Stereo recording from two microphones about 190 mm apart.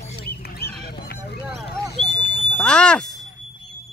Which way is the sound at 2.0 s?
40° left (ahead or behind).